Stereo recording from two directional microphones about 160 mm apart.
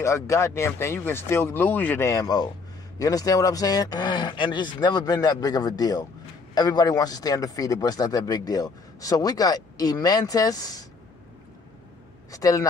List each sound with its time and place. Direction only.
0.0 s speech: 15° left (ahead or behind)
12.3 s speech: 20° left (ahead or behind)